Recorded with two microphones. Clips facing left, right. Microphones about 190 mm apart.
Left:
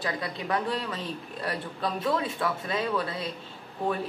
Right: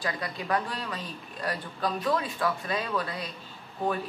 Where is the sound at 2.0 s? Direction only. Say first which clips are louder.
Left 1 dB; 25° left (ahead or behind).